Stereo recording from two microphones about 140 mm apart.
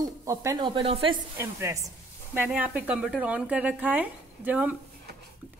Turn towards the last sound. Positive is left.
turn(degrees=-10)  # may be behind; listen again after turning